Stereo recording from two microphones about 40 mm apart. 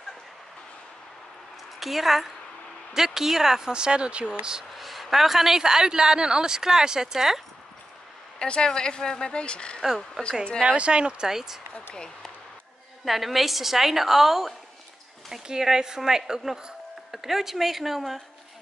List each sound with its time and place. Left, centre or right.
1.8 s a woman's voice: centre
3.7 s speech: right
4.7 s a woman's voice: centre
8.4 s speech: left
10.6 s speech: right
11.2 s a woman's voice: centre
11.9 s speech: centre
13.0 s a woman's voice: centre